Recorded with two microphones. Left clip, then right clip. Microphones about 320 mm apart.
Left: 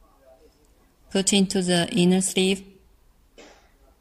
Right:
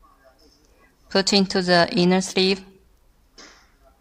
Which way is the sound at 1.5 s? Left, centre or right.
Centre.